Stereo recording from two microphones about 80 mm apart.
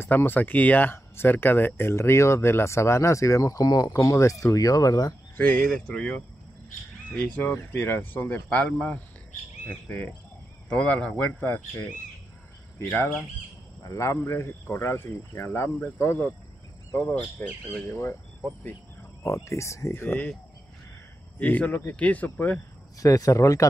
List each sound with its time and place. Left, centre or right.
0.0 s speech: left
5.4 s speech: left
7.5 s speech: left
8.5 s speech: centre
12.7 s speech: left
17.1 s speech: centre
19.2 s speech: left
21.4 s speech: centre
22.9 s speech: left